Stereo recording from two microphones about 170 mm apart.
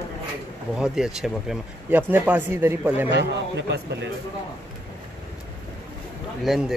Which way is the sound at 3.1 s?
90° right.